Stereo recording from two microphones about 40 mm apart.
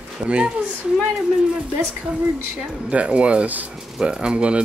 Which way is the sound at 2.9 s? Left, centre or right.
Right.